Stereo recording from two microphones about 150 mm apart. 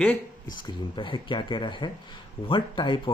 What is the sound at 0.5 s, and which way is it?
Speech, 30° left (ahead or behind).